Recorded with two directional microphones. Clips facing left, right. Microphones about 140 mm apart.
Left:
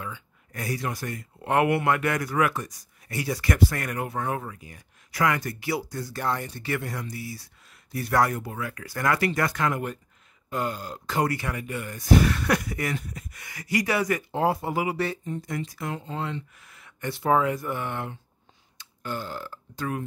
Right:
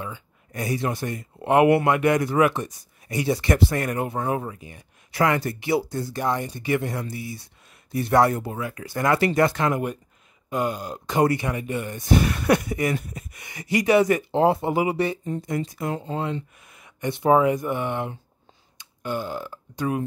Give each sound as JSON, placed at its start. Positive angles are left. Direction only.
{"t": 0.5, "sound": "speech", "side_deg": -20}
{"t": 6.1, "sound": "speech", "side_deg": -15}
{"t": 6.9, "sound": "speech", "side_deg": -30}
{"t": 16.5, "sound": "speech", "side_deg": -20}